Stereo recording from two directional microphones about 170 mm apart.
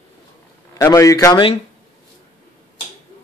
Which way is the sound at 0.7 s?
20° left (ahead or behind).